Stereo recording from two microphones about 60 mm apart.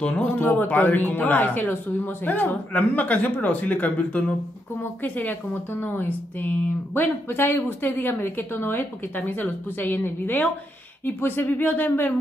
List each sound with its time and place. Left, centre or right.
0.2 s speech: left